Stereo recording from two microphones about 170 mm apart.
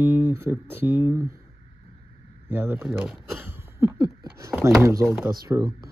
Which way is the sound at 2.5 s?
15° right (ahead or behind).